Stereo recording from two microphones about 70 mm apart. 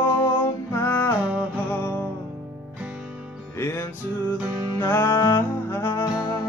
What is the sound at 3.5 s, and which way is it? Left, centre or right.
Music, left.